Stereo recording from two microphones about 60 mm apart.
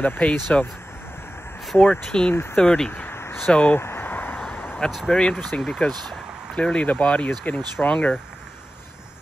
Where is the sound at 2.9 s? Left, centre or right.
Left.